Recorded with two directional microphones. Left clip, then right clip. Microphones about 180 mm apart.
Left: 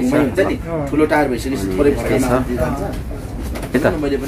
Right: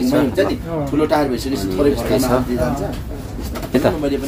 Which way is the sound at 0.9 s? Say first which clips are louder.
Left 2 dB; 30° right (ahead or behind).